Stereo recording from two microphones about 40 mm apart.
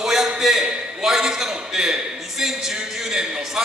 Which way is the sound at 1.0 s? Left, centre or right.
Centre.